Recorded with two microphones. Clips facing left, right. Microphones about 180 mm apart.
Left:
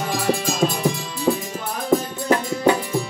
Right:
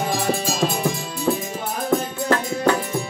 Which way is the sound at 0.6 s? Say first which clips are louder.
Left 2 dB; 15° left (ahead or behind).